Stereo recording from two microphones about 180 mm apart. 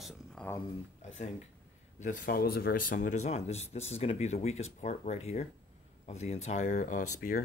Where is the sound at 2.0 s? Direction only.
45° left (ahead or behind).